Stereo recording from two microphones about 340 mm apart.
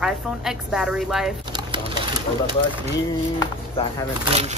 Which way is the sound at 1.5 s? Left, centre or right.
Centre.